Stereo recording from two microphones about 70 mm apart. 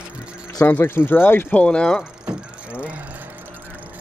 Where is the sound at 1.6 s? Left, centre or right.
Centre.